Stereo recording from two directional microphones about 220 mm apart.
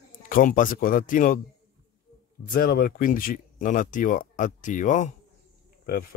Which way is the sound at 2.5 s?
45° left (ahead or behind).